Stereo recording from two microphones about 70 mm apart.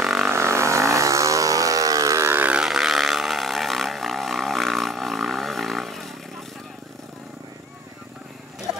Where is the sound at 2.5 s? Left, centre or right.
Centre.